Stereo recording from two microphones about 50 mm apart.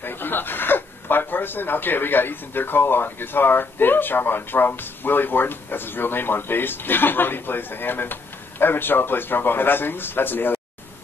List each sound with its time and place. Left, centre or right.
0.0 s speech: left